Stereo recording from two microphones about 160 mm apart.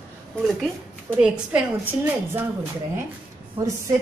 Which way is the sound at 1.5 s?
10° right (ahead or behind).